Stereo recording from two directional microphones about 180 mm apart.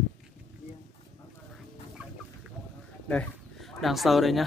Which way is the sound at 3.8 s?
Centre (ahead or behind).